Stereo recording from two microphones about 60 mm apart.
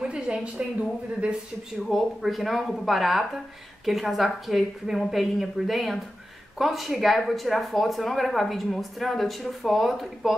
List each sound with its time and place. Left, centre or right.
0.0 s speech: centre
1.9 s speech: centre